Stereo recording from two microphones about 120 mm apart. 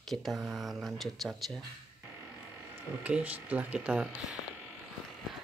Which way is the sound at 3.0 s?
10° right (ahead or behind).